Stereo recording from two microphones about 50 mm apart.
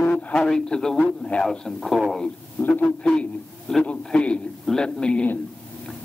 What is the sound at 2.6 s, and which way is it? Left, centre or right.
Speech, left.